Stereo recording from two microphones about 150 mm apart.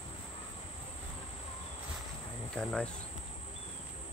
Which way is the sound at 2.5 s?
5° left (ahead or behind).